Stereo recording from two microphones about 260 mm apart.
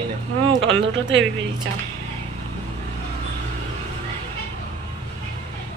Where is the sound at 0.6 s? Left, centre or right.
Right.